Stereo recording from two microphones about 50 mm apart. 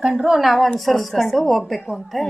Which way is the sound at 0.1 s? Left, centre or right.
Centre.